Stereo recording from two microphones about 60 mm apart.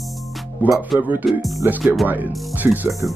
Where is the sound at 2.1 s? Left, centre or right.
Right.